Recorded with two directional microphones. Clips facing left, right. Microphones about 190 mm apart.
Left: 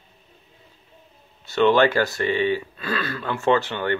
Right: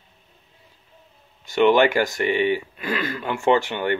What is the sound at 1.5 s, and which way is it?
Speech, 15° right (ahead or behind).